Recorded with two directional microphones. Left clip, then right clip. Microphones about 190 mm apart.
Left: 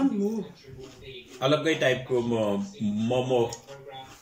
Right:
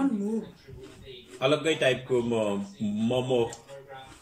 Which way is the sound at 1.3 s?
Centre (ahead or behind).